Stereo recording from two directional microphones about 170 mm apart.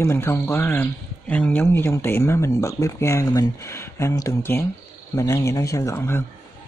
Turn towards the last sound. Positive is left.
turn(degrees=15)  # may be behind; listen again after turning